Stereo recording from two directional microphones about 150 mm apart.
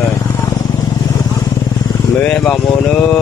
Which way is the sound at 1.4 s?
25° left (ahead or behind).